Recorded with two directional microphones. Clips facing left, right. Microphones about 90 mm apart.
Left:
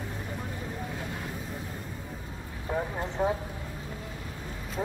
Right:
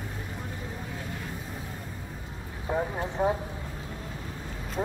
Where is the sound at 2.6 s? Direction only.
10° right (ahead or behind).